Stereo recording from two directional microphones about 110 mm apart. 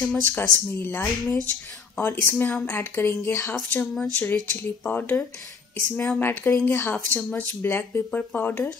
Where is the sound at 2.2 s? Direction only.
15° left (ahead or behind).